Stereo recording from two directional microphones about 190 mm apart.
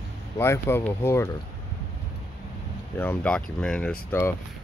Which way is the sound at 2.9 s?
5° left (ahead or behind).